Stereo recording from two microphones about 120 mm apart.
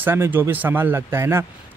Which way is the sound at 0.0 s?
15° right (ahead or behind).